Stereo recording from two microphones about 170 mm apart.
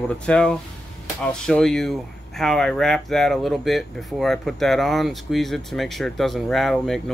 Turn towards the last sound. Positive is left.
turn(degrees=0)  # may be behind; listen again after turning